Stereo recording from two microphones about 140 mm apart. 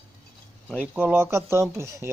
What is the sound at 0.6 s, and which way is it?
Speech, 10° right (ahead or behind).